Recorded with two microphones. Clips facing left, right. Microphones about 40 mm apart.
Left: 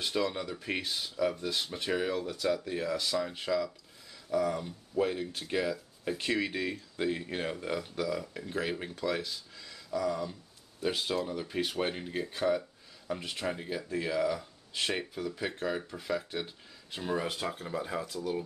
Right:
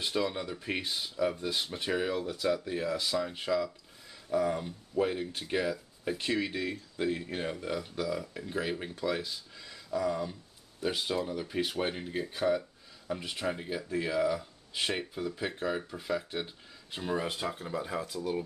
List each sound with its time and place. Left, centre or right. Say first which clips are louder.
0.0 s speech: even; centre
4.1 s a sound: right 1 dB; centre
5.0 s speech: even; centre
6.5 s speech: even; centre
8.4 s speech: even; centre
10.8 s speech: even; centre